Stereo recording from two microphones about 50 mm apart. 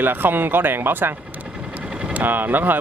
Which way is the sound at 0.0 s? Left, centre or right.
Right.